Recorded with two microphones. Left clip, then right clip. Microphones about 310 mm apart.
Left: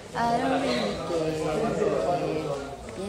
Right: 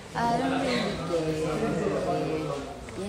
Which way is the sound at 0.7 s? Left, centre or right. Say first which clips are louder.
Left 1 dB; right.